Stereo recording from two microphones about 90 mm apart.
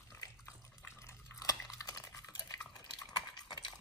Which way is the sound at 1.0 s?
35° left (ahead or behind).